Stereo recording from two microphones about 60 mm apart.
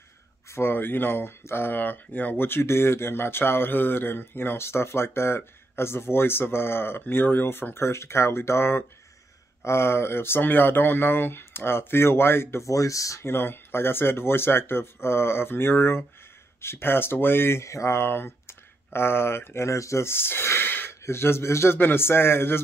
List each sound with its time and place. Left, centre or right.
0.5 s speech: left
12.6 s speech: left
13.2 s speech: left
17.6 s speech: left
21.7 s speech: left